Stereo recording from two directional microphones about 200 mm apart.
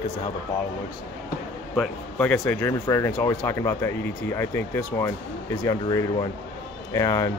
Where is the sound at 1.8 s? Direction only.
5° left (ahead or behind).